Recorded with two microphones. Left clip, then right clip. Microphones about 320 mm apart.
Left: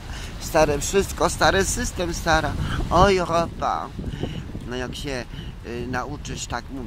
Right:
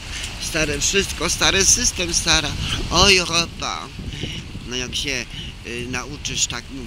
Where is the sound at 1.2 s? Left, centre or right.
Centre.